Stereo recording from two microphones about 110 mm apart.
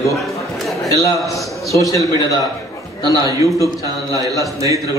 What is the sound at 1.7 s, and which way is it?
Speech, 30° left (ahead or behind).